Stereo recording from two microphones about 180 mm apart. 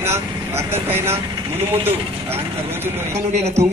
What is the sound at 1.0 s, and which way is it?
Speech, 35° right (ahead or behind).